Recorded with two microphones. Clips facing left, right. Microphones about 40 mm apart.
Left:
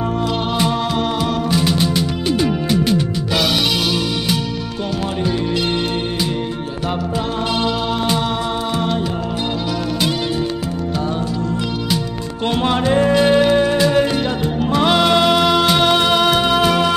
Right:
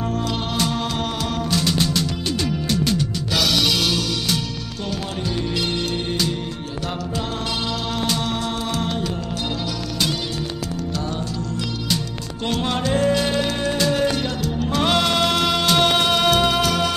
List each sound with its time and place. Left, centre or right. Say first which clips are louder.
0.6 s music: left 4 dB; centre
12.6 s music: left 5 dB; centre